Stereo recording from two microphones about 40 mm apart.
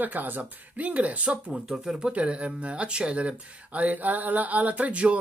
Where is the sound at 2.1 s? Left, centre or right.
Right.